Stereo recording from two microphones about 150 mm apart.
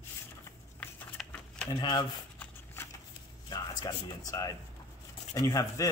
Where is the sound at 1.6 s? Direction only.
25° left (ahead or behind).